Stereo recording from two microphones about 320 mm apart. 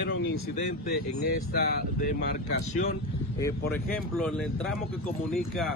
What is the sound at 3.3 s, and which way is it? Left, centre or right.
Speech, centre.